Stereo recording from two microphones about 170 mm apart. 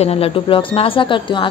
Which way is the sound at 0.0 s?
35° left (ahead or behind).